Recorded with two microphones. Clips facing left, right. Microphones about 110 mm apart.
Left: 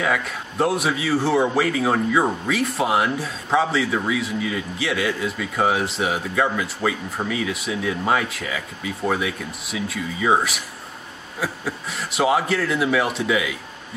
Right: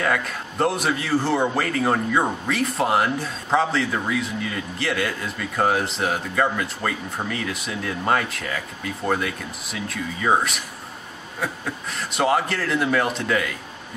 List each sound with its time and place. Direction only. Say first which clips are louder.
0.0 s a man's voice: even; centre (ahead or behind)